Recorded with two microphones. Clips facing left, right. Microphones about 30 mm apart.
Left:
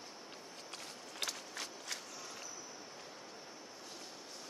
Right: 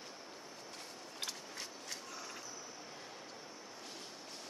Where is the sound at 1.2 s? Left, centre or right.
Left.